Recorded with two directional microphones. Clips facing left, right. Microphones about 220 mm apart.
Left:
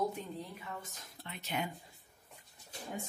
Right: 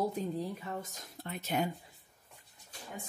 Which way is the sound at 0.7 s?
45° right (ahead or behind).